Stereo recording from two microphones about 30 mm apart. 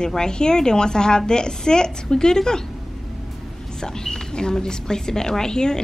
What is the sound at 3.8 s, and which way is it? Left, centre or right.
A woman's voice, left.